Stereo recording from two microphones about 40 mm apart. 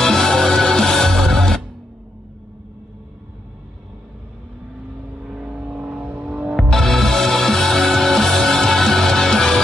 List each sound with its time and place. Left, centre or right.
0.0 s music: centre
5.5 s vehicle: right
6.7 s music: centre